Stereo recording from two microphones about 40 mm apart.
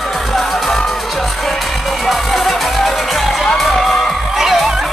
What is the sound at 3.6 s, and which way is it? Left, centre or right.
Crowd, centre.